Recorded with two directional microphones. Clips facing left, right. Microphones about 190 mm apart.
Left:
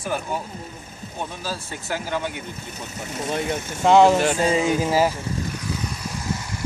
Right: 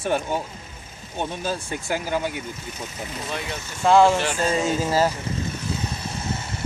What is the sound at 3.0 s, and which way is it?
Speech, 45° left (ahead or behind).